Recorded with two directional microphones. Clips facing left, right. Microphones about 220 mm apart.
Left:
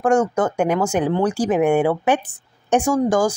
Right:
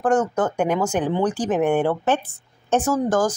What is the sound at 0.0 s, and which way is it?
A woman's voice, 10° left (ahead or behind).